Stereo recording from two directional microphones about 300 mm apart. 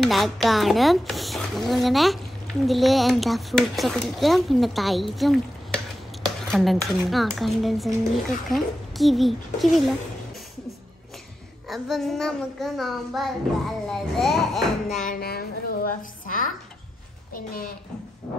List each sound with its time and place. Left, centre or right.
0.0 s child singing: centre
11.7 s child singing: centre
15.0 s a woman's voice: left